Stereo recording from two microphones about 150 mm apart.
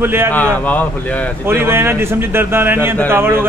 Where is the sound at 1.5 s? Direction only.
15° right (ahead or behind).